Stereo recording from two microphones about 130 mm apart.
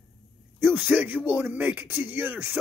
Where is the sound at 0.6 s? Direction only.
15° right (ahead or behind).